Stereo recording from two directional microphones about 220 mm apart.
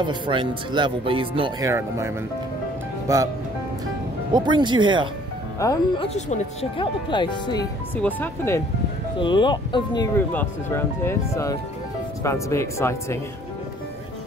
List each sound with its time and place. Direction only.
0.0 s speech: 20° right (ahead or behind)
1.7 s speech: 10° right (ahead or behind)
5.6 s speech: 15° left (ahead or behind)
6.0 s speech: 30° left (ahead or behind)
7.9 s speech: 10° left (ahead or behind)
9.2 s speech: 20° left (ahead or behind)
10.1 s speech: 10° left (ahead or behind)